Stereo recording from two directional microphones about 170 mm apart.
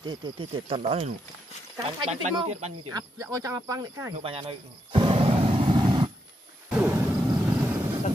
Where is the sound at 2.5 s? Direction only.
40° right (ahead or behind).